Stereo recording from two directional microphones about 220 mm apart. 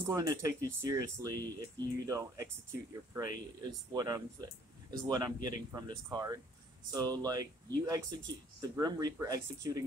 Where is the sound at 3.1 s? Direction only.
15° right (ahead or behind).